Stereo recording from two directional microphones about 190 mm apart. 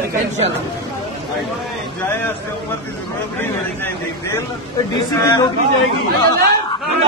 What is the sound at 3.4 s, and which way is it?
A man's voice, 10° left (ahead or behind).